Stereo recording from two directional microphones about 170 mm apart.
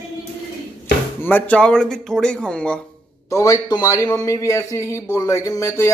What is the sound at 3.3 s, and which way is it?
A man's voice, 20° left (ahead or behind).